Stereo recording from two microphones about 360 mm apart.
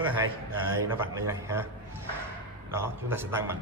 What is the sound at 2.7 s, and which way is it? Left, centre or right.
Speech, centre.